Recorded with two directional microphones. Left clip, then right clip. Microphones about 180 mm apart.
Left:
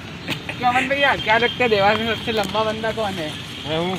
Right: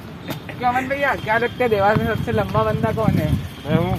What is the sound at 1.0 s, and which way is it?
Speech, 30° left (ahead or behind).